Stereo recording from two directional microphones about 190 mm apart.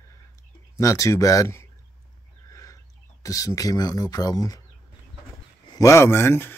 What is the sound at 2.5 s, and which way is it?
Speech, 15° left (ahead or behind).